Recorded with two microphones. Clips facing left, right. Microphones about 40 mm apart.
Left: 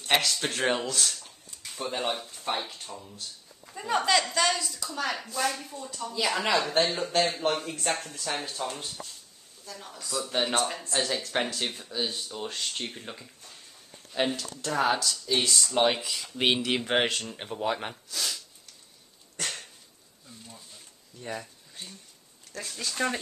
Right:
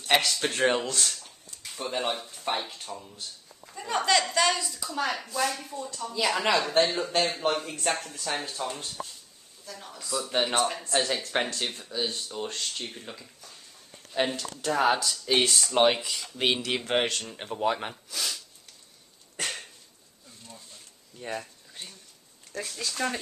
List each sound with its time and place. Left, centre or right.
0.1 s speech: centre
13.1 s speech: left
14.1 s speech: centre
15.2 s speech: right
15.8 s speech: centre
19.4 s dog: centre
20.4 s a sound: centre
22.7 s speech: centre